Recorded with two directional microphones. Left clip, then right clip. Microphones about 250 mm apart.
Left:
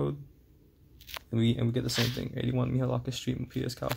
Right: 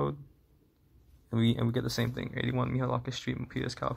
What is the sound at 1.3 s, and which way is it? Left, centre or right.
Speech, centre.